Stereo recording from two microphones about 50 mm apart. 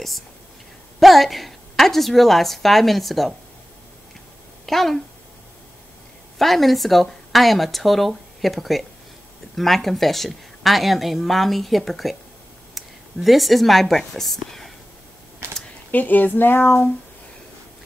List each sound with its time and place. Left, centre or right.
0.9 s a woman's voice: centre
4.6 s a woman's voice: centre
6.3 s a woman's voice: centre
15.4 s a sound: right
15.9 s speech: left